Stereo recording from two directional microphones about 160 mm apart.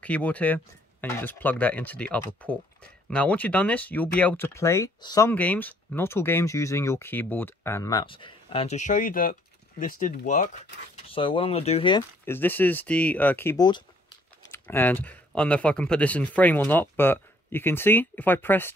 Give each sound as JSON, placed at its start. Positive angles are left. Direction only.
{"t": 0.0, "sound": "speech", "side_deg": 10}
{"t": 5.3, "sound": "speech", "side_deg": 10}
{"t": 11.1, "sound": "speech", "side_deg": 35}
{"t": 12.3, "sound": "speech", "side_deg": 10}
{"t": 13.6, "sound": "speech", "side_deg": 25}
{"t": 14.4, "sound": "speech", "side_deg": 15}